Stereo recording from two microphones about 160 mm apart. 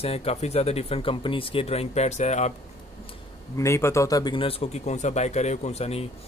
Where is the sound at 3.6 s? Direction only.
15° left (ahead or behind).